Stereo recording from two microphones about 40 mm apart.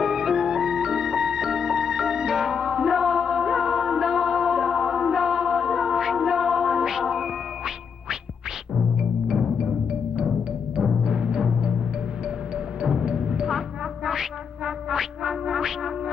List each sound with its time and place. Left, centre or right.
0.0 s music: centre
11.1 s timpani: centre
13.0 s music: centre
14.0 s quack: centre
15.2 s music: centre